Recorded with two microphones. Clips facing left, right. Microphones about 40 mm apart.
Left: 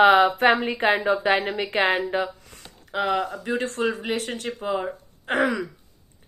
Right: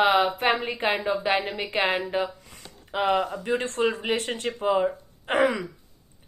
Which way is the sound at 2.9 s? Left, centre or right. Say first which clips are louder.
Even; centre.